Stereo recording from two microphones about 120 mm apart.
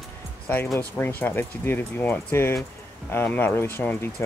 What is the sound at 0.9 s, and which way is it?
Speech, 15° left (ahead or behind).